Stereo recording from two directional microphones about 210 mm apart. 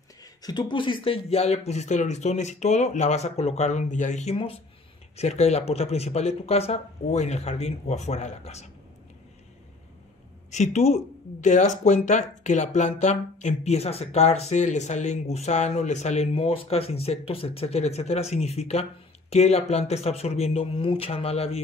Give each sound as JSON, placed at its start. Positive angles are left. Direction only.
{"t": 0.2, "sound": "speech", "side_deg": 20}
{"t": 10.5, "sound": "speech", "side_deg": 35}